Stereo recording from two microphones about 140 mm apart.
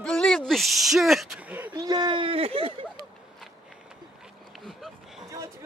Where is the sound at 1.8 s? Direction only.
30° right (ahead or behind).